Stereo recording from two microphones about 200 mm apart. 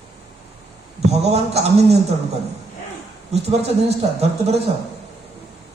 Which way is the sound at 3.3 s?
30° right (ahead or behind).